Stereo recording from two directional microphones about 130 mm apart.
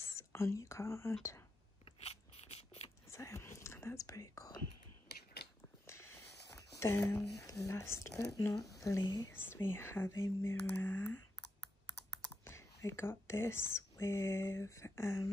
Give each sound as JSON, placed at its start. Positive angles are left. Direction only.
{"t": 0.0, "sound": "speech", "side_deg": 20}
{"t": 1.9, "sound": "biting", "side_deg": 50}
{"t": 3.1, "sound": "whispering", "side_deg": 20}
{"t": 5.9, "sound": "a sound", "side_deg": 20}
{"t": 7.6, "sound": "speech", "side_deg": 20}
{"t": 9.3, "sound": "speech", "side_deg": 15}
{"t": 12.4, "sound": "speech", "side_deg": 20}